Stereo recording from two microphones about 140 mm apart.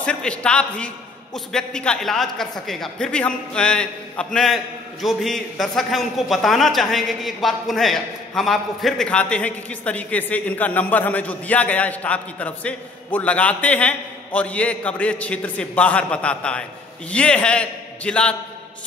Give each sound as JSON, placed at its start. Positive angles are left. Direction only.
{"t": 0.0, "sound": "a man's voice", "side_deg": 10}